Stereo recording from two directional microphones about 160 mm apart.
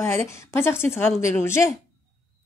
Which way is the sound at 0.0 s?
15° left (ahead or behind).